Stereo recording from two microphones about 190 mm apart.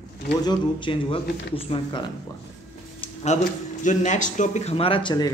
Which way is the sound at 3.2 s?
40° left (ahead or behind).